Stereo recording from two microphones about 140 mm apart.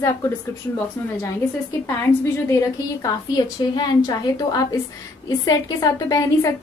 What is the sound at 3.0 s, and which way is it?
A woman's voice, 30° left (ahead or behind).